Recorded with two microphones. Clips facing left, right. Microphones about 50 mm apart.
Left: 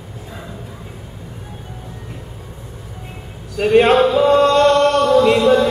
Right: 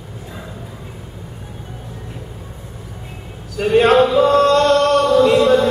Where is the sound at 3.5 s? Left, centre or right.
Centre.